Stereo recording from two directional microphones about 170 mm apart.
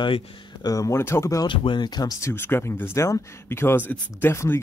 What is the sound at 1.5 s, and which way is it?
Speech, 30° left (ahead or behind).